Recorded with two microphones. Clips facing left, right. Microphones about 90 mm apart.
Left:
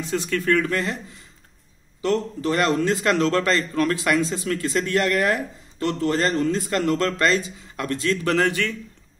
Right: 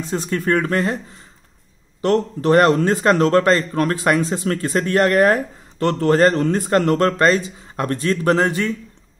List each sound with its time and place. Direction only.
0.0 s a man's voice: 35° right (ahead or behind)
2.0 s a man's voice: 55° right (ahead or behind)
5.8 s a man's voice: 55° right (ahead or behind); by 8.7 s 30° right (ahead or behind)